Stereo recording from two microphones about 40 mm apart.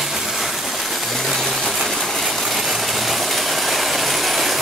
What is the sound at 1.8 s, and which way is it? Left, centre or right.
Engine, centre.